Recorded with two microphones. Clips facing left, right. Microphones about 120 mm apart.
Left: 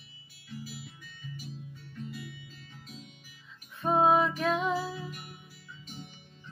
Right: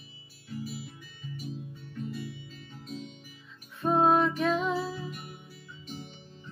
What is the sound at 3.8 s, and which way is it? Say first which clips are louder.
Music: right 1 dB; centre (ahead or behind).